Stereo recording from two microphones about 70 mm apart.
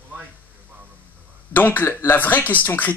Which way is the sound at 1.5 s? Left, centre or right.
Left.